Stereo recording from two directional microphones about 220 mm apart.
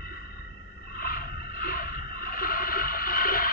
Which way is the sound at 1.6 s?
40° left (ahead or behind).